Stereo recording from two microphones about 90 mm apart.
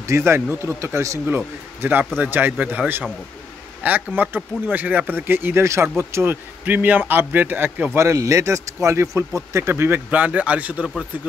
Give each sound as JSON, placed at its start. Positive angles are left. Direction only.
{"t": 0.1, "sound": "speech", "side_deg": -25}
{"t": 1.2, "sound": "speech", "side_deg": -20}
{"t": 8.0, "sound": "speech", "side_deg": -35}